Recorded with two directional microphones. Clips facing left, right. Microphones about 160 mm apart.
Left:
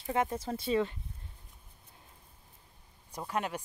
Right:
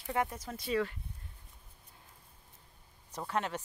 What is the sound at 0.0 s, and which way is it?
Speech, 25° left (ahead or behind).